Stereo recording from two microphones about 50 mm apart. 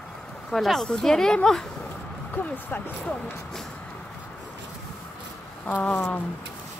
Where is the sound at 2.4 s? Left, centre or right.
Left.